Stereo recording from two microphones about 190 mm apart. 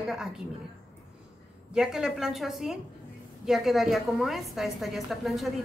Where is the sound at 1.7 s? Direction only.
Centre (ahead or behind).